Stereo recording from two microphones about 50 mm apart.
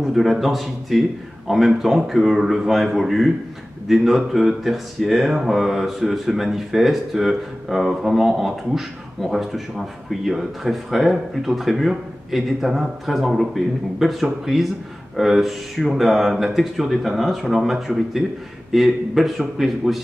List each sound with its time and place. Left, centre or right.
0.0 s speech: centre